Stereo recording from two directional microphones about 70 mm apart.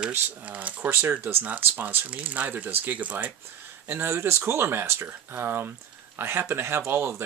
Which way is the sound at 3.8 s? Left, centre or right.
Right.